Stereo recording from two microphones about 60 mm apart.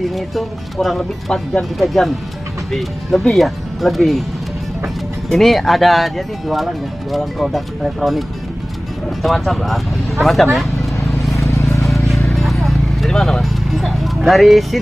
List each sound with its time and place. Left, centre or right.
0.1 s speech: centre
5.3 s speech: centre
9.2 s speech: centre
11.4 s vehicle: left
11.8 s music: centre
12.4 s vehicle: centre